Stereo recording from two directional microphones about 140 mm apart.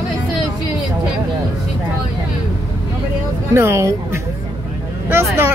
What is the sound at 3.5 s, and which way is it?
Speech, 20° right (ahead or behind).